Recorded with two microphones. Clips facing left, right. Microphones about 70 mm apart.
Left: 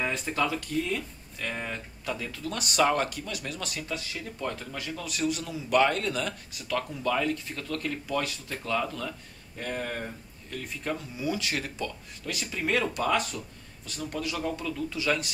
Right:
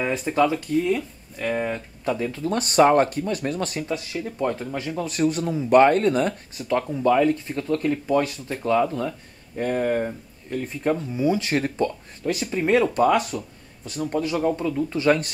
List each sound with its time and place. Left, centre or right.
0.0 s speech: centre; by 3.8 s right
4.2 s speech: right
13.0 s speech: centre
14.1 s speech: right